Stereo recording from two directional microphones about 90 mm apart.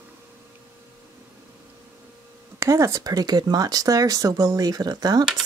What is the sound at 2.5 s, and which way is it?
Speech, 30° right (ahead or behind).